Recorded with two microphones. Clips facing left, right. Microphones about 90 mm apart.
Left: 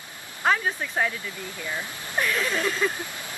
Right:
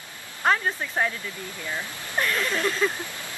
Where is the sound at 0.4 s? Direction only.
Centre (ahead or behind).